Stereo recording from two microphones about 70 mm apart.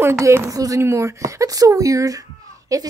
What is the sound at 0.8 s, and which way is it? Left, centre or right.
A woman's voice, right.